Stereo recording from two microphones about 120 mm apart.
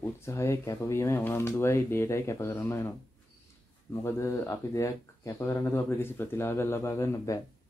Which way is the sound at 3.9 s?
20° left (ahead or behind).